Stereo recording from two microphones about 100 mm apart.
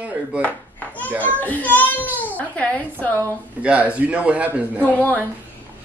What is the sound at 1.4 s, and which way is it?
A child's voice, 15° left (ahead or behind).